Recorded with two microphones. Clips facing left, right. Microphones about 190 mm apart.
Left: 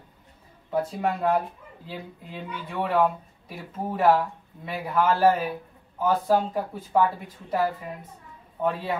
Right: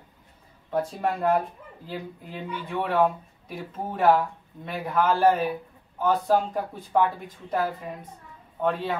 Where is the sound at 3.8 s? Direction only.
Centre (ahead or behind).